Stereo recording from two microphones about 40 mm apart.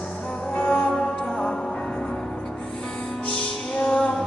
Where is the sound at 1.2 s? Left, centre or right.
Left.